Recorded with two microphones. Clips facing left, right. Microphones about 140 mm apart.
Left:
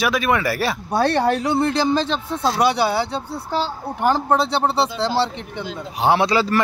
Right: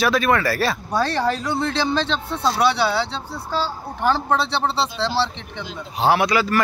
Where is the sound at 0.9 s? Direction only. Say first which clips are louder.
Left 6 dB; 60° left (ahead or behind).